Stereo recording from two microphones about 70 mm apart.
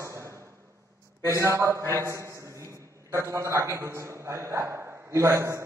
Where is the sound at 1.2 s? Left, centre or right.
Right.